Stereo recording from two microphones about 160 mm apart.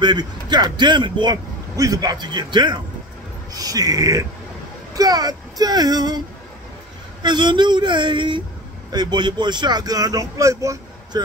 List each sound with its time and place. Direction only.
0.0 s speech: 25° right (ahead or behind)
7.2 s speech: 30° right (ahead or behind)